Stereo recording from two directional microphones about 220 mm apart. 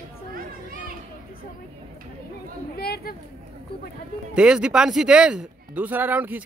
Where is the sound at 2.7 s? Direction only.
45° left (ahead or behind).